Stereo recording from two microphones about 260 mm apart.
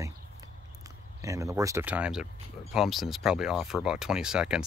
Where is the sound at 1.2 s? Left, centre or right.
Centre.